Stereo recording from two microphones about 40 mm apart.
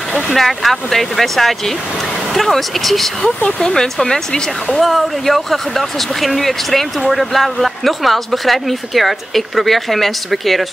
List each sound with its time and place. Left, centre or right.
0.3 s speech: centre
3.4 s speech: centre